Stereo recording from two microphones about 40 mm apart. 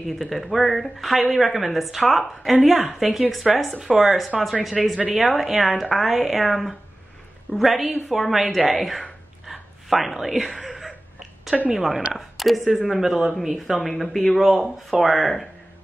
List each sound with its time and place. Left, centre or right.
0.2 s speech: centre
9.5 s whispering: centre
10.6 s a sound: centre
11.7 s speech: centre
13.7 s speech: centre